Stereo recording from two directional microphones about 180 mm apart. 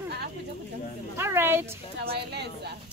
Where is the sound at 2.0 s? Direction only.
60° right (ahead or behind).